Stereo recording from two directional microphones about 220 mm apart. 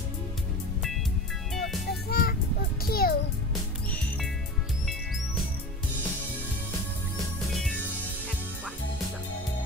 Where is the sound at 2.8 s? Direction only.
40° left (ahead or behind).